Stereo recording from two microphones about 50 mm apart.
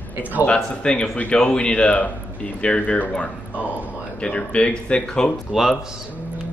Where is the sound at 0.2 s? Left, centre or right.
Right.